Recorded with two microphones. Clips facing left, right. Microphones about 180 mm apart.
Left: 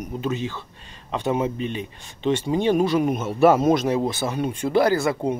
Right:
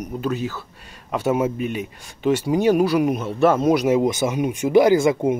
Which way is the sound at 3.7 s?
10° right (ahead or behind).